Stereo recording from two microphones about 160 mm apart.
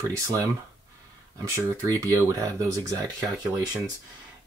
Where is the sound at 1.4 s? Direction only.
20° right (ahead or behind).